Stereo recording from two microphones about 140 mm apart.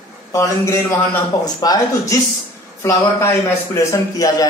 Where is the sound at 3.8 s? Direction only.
25° left (ahead or behind).